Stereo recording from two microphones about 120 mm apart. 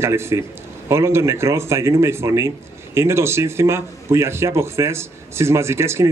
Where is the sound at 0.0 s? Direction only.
20° right (ahead or behind).